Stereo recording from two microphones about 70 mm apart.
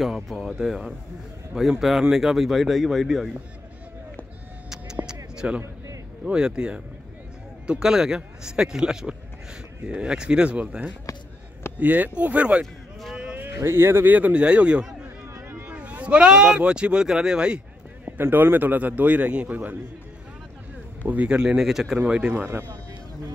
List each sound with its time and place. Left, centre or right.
0.0 s speech: centre
5.0 s music: centre
6.2 s a man's voice: centre
13.1 s a sound: centre
13.6 s speech: right
14.1 s speech: centre
15.3 s a sound: right
15.7 s speech: centre
18.0 s a man's voice: right
21.1 s speech: centre
22.3 s speech: right